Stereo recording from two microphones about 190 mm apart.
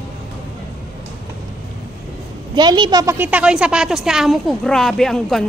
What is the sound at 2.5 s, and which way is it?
A woman's voice, 25° right (ahead or behind).